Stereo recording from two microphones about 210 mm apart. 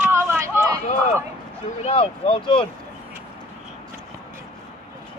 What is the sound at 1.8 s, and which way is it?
Speech, 25° left (ahead or behind).